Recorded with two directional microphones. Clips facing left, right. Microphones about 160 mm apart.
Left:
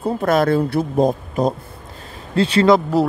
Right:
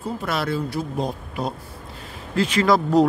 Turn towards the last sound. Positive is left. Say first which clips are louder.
# right 1 dB
turn(degrees=10)  # may be behind; listen again after turning